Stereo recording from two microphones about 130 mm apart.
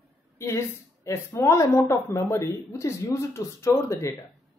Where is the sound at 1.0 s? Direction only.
20° left (ahead or behind).